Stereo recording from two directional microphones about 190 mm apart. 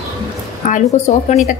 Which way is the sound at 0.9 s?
40° left (ahead or behind).